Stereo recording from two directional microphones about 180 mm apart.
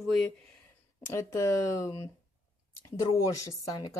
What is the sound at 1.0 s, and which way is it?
Speech, 15° left (ahead or behind).